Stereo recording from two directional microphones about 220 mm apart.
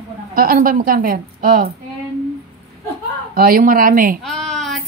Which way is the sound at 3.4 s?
40° right (ahead or behind).